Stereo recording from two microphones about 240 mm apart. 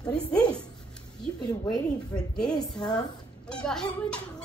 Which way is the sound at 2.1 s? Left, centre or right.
Centre.